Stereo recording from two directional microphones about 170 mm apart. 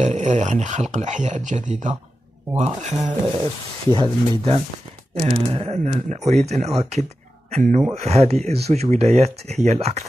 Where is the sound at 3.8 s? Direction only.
25° right (ahead or behind).